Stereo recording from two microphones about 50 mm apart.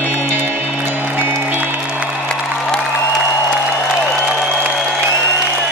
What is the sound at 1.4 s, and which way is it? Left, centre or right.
Music, right.